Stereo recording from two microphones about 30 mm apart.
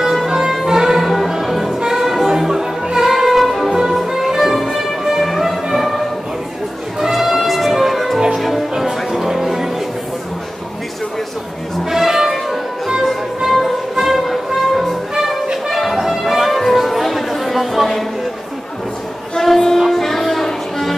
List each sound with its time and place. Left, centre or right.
0.0 s music: centre
2.2 s music: centre
3.1 s music: centre
8.7 s music: centre
11.9 s music: centre
16.7 s chatter: centre
19.4 s child singing: centre
19.9 s music: centre